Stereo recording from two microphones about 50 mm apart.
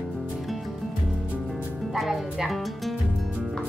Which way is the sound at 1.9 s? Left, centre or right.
Centre.